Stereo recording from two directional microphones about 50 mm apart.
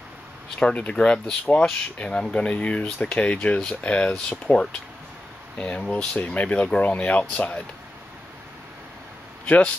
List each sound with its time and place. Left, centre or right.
0.6 s speech: left
2.0 s speech: centre